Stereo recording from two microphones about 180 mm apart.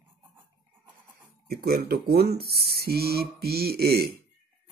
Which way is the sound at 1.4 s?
60° right (ahead or behind).